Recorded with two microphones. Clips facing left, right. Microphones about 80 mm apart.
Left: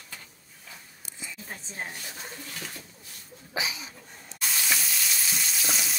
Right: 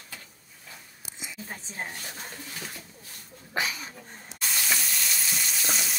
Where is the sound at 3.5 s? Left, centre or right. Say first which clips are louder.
Right 2 dB; right.